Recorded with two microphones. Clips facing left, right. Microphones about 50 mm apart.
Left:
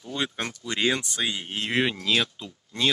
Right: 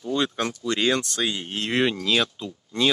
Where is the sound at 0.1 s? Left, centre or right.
Centre.